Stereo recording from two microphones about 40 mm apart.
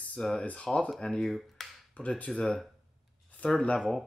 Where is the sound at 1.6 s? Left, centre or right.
Centre.